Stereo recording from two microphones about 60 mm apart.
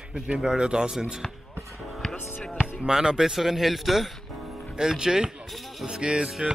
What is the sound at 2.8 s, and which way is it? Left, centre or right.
Speech, centre.